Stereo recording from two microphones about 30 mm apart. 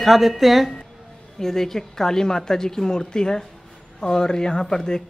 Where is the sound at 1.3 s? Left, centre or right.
Centre.